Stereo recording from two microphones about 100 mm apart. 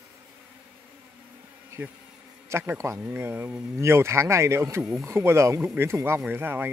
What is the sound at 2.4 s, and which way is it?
Speech, 25° right (ahead or behind).